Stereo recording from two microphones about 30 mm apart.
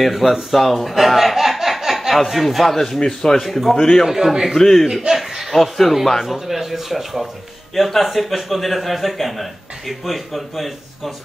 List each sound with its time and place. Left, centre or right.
0.0 s a man's voice: centre
3.7 s a man's voice: left
4.1 s speech: centre
4.6 s a man's voice: centre
5.0 s chuckle: centre
5.5 s speech: centre
6.2 s speech: centre
7.7 s speech: centre